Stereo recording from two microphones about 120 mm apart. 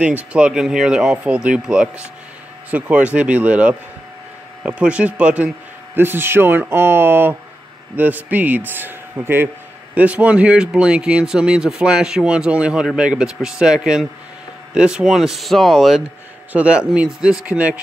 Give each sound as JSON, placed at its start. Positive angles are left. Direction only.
{"t": 0.0, "sound": "speech", "side_deg": -10}